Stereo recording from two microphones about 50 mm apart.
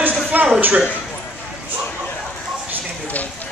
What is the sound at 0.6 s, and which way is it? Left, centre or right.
Speech, right.